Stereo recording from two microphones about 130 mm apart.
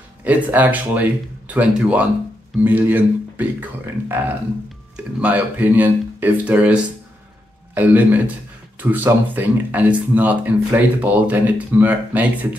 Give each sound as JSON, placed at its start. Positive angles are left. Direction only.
{"t": 0.2, "sound": "speech", "side_deg": -10}